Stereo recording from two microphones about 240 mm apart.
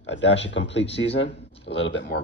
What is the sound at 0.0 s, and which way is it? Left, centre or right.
A man's voice, left.